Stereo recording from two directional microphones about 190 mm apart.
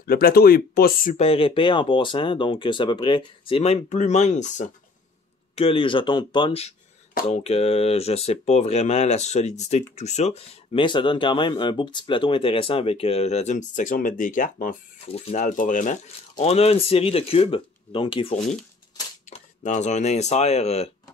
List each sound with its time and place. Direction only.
0.0 s speech: 50° left (ahead or behind)
1.1 s speech: 30° left (ahead or behind)
5.6 s speech: 30° left (ahead or behind)
19.2 s speech: 40° left (ahead or behind)